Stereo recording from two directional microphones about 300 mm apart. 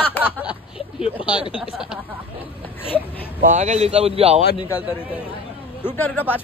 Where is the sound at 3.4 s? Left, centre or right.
Right.